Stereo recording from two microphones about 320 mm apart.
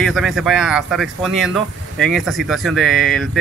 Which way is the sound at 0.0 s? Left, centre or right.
Centre.